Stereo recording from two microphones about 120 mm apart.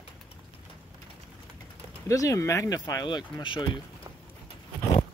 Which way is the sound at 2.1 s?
30° left (ahead or behind).